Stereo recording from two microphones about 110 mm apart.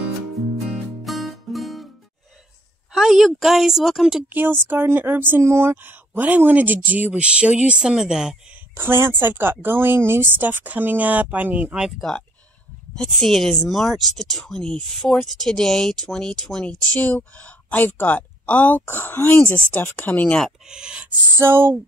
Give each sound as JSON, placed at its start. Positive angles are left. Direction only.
{"t": 1.0, "sound": "music", "side_deg": 0}
{"t": 2.9, "sound": "speech", "side_deg": 0}
{"t": 4.3, "sound": "speech", "side_deg": -15}
{"t": 8.7, "sound": "speech", "side_deg": -20}
{"t": 12.9, "sound": "speech", "side_deg": 5}
{"t": 20.3, "sound": "speech", "side_deg": -5}
{"t": 21.4, "sound": "speech", "side_deg": -20}